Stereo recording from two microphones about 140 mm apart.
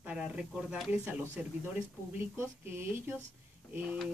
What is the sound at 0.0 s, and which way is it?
Speech, 5° right (ahead or behind).